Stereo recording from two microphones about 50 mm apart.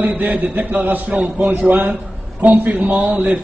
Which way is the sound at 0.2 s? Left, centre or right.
Right.